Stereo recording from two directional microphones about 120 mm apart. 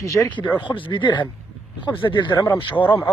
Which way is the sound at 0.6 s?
45° left (ahead or behind).